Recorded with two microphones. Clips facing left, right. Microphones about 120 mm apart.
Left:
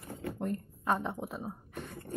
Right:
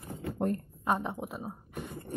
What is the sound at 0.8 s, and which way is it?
Speech, 10° right (ahead or behind).